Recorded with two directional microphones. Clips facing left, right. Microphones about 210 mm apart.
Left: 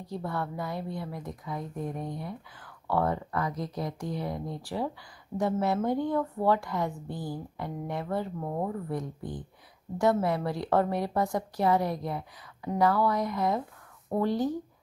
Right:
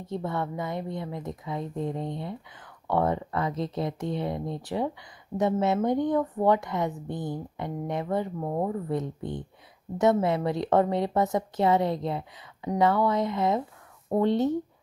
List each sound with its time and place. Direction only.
0.0 s a woman's voice: 20° right (ahead or behind)